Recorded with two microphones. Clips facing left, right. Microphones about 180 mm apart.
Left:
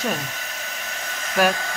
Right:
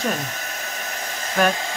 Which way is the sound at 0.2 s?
45° right (ahead or behind).